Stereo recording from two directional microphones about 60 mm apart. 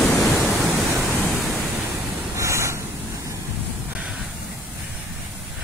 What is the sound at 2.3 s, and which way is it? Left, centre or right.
Waves, right.